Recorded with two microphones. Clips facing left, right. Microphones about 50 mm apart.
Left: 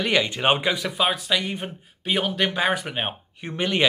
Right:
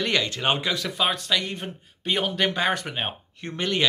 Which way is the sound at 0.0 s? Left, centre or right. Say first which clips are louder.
Left 3 dB; centre.